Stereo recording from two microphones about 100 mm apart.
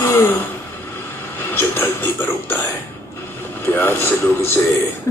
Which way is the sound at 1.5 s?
20° left (ahead or behind).